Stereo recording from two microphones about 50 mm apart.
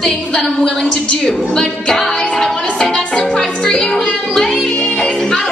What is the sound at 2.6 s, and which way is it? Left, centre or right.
Music, centre.